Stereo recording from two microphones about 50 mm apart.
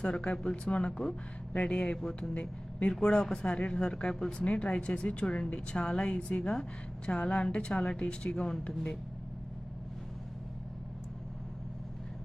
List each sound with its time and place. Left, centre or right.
0.0 s speech: left